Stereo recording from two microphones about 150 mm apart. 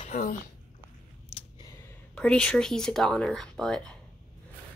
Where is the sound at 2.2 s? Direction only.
5° left (ahead or behind).